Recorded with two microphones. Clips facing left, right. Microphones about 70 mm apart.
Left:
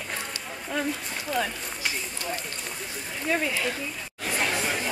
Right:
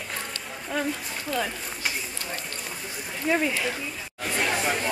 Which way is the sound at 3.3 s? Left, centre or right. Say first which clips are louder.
Right 2 dB; centre.